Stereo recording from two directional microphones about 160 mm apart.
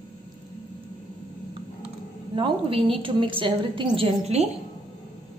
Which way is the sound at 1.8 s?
35° right (ahead or behind).